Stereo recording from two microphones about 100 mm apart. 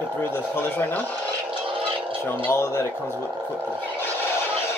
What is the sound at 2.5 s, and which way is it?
Speech, 30° left (ahead or behind).